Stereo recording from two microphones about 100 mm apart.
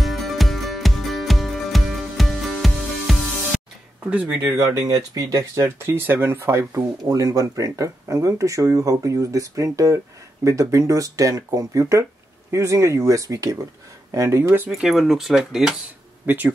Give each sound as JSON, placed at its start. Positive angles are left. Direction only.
{"t": 0.0, "sound": "music", "side_deg": 0}
{"t": 4.0, "sound": "speech", "side_deg": -15}
{"t": 14.7, "sound": "speech", "side_deg": 0}
{"t": 16.3, "sound": "speech", "side_deg": -20}